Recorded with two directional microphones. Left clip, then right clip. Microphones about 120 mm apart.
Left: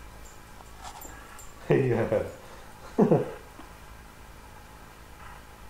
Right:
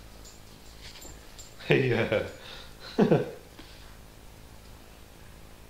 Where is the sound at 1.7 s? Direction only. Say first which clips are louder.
Even; 10° right (ahead or behind).